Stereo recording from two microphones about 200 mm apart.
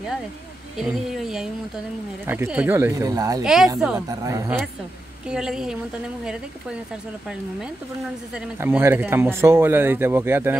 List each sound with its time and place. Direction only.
0.7 s speech: centre (ahead or behind); by 3.4 s 20° right (ahead or behind)
3.4 s speech: 5° right (ahead or behind)
4.1 s speech: 15° right (ahead or behind)
5.3 s speech: 5° right (ahead or behind)
8.4 s speech: 10° right (ahead or behind)